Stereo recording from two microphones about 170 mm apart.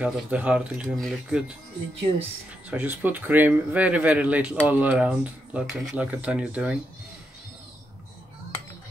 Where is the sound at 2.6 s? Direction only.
10° right (ahead or behind).